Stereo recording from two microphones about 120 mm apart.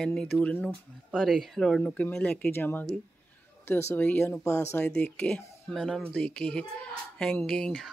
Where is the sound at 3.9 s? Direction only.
15° left (ahead or behind).